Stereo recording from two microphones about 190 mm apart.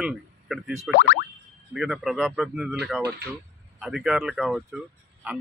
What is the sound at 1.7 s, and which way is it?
Speech, centre (ahead or behind).